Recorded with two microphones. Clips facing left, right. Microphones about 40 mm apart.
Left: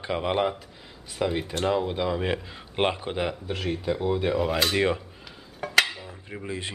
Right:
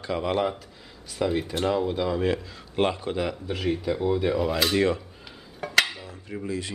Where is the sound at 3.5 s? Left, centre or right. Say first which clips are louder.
Right 4 dB; centre.